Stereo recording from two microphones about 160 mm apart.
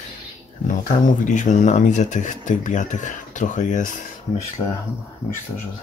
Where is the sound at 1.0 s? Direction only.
50° left (ahead or behind).